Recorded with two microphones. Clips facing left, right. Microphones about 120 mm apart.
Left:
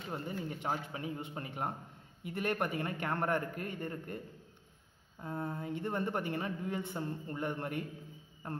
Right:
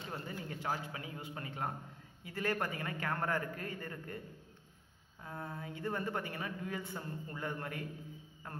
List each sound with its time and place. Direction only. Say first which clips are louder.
0.1 s a man's voice: left 5 dB; 20° left (ahead or behind)
5.2 s a man's voice: left 5 dB; 25° left (ahead or behind)